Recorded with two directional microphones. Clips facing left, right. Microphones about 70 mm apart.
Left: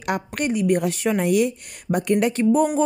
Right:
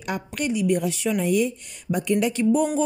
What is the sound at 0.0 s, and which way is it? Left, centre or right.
A woman's voice, left.